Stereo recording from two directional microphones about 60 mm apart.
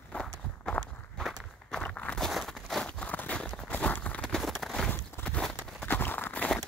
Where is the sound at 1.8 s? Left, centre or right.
Centre.